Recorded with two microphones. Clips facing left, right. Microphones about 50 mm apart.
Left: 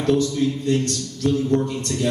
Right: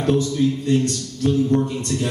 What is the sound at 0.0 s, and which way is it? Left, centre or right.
A man's voice, right.